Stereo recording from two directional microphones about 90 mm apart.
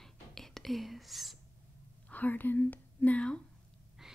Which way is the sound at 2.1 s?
20° left (ahead or behind).